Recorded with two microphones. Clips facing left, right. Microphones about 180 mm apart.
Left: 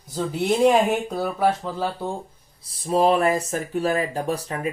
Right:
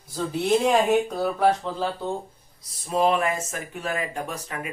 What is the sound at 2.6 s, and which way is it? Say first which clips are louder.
Speech: left 3 dB; 30° left (ahead or behind).